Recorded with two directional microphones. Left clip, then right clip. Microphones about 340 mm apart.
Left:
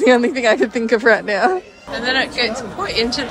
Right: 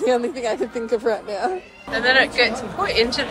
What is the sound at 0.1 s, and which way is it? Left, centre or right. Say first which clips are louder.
Speech: left 6 dB; left.